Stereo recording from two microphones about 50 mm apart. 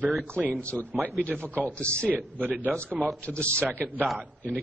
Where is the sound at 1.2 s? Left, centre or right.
Left.